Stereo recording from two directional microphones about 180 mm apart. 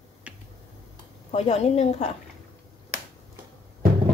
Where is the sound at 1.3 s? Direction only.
35° left (ahead or behind).